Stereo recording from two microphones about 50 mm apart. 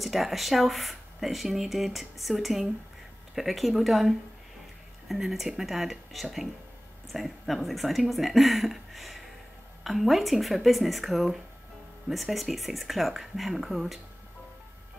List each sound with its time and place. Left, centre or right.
0.0 s speech: centre